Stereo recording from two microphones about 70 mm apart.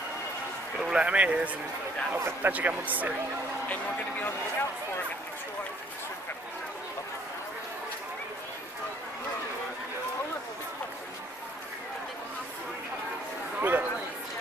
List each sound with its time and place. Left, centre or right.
0.7 s speech: centre
3.6 s speech: left
13.6 s a sound: right